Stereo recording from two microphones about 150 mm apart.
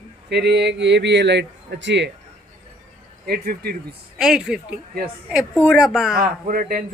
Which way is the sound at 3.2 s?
90° right.